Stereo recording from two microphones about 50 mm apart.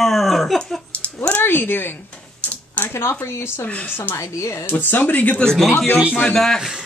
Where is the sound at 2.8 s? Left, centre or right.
Left.